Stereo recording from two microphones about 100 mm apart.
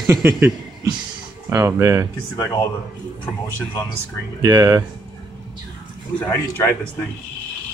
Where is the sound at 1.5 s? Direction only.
30° right (ahead or behind).